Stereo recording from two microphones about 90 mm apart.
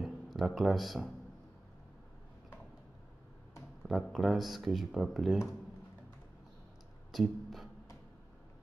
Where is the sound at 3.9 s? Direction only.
Centre (ahead or behind).